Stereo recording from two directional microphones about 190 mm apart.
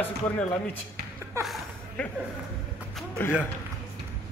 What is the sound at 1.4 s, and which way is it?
Speech, 15° right (ahead or behind).